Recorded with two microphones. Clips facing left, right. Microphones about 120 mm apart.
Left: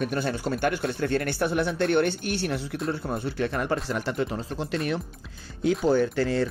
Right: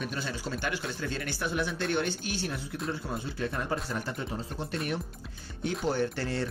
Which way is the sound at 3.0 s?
55° left (ahead or behind).